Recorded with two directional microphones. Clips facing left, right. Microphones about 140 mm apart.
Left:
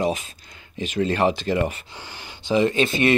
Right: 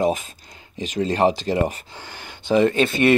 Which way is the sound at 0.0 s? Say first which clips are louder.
Right 3 dB; 45° right (ahead or behind).